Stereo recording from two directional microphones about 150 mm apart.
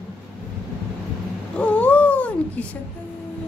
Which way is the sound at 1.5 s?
10° left (ahead or behind).